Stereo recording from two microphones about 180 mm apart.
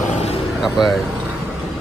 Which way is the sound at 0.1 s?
35° left (ahead or behind).